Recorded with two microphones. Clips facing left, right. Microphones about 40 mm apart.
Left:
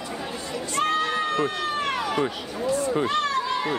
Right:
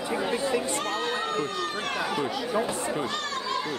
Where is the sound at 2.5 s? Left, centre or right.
Right.